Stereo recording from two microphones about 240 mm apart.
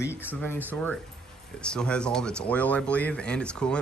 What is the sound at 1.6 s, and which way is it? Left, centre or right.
Speech, centre.